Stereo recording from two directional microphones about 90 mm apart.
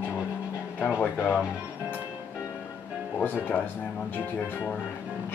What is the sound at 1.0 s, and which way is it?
Speech, 20° left (ahead or behind).